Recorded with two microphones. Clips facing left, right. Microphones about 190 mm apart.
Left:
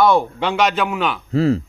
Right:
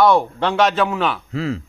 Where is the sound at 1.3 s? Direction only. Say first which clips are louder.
Left 7 dB; 35° left (ahead or behind).